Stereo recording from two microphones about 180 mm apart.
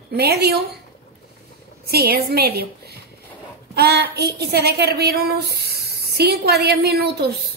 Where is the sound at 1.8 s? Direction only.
60° right (ahead or behind).